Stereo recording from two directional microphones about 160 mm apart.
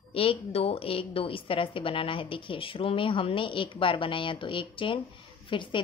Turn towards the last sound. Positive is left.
turn(degrees=30)  # may be behind; listen again after turning